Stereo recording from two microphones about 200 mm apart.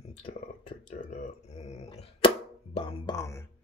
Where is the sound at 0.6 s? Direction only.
35° left (ahead or behind).